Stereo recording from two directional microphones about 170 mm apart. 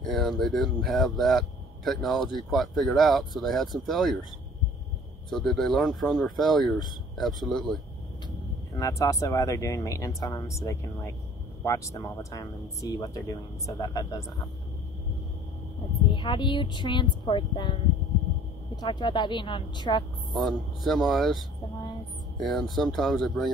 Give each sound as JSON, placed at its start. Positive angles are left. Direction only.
{"t": 0.0, "sound": "speech", "side_deg": 0}
{"t": 5.3, "sound": "speech", "side_deg": 0}
{"t": 8.7, "sound": "speech", "side_deg": 20}
{"t": 16.1, "sound": "speech", "side_deg": 25}
{"t": 18.8, "sound": "speech", "side_deg": 25}
{"t": 20.3, "sound": "speech", "side_deg": 0}